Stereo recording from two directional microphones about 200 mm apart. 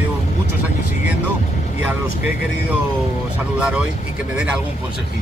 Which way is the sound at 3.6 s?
5° right (ahead or behind).